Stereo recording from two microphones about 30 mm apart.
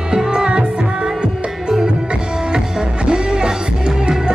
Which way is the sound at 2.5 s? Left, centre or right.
Right.